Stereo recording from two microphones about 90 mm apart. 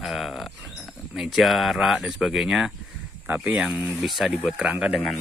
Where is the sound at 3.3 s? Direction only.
15° right (ahead or behind).